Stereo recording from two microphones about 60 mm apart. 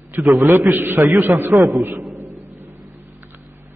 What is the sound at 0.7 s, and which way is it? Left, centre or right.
Speech, right.